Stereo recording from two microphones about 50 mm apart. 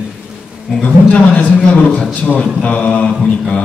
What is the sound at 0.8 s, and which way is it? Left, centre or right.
A man's voice, left.